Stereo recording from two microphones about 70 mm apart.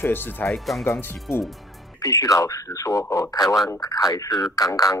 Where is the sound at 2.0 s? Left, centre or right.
Left.